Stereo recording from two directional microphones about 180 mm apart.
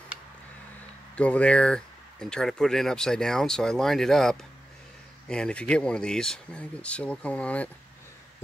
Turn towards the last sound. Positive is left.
turn(degrees=10)  # may be behind; listen again after turning